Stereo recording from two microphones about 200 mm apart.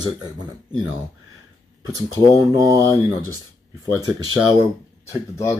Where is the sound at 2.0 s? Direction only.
15° right (ahead or behind).